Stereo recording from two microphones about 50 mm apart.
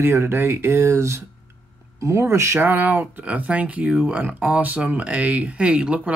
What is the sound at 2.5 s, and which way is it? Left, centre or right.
Speech, right.